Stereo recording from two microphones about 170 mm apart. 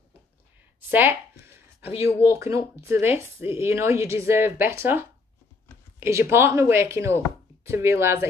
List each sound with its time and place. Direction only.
0.7 s speech: 10° right (ahead or behind)